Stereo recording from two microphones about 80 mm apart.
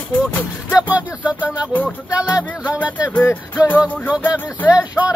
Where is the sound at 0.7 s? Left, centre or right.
Centre.